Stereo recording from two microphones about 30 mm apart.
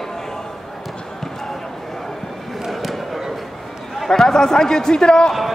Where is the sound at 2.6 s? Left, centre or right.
Centre.